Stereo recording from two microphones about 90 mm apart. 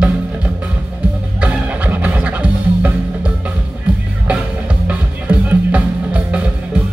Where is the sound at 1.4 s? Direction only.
15° right (ahead or behind).